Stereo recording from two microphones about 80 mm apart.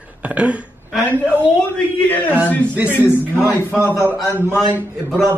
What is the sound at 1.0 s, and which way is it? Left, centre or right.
Speech, centre.